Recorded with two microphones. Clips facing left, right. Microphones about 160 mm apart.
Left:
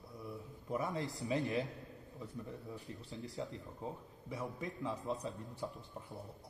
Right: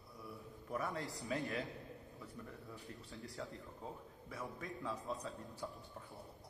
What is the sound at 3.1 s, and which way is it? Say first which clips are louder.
A man's voice: left 5 dB; 20° left (ahead or behind).